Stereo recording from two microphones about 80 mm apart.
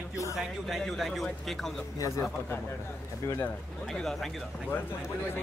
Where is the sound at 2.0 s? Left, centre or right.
Left.